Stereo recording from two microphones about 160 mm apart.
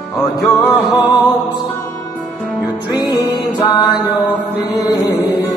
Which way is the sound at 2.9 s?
25° left (ahead or behind).